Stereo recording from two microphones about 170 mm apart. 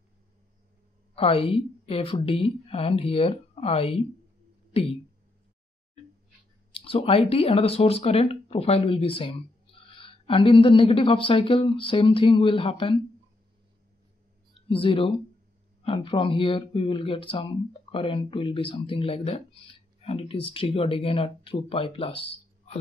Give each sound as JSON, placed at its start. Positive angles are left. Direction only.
{"t": 1.1, "sound": "speech", "side_deg": 35}
{"t": 6.7, "sound": "speech", "side_deg": 35}
{"t": 14.7, "sound": "speech", "side_deg": 30}